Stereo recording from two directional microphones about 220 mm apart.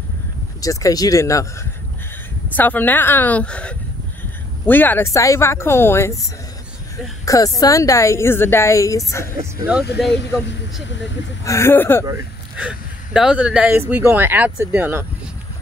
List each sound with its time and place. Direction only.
0.6 s a woman's voice: 15° left (ahead or behind)
9.8 s speech: 50° left (ahead or behind)
11.4 s a woman's voice: 10° left (ahead or behind)
12.1 s speech: 5° right (ahead or behind)